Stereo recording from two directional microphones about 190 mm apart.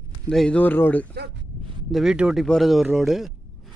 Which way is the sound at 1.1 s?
60° right (ahead or behind).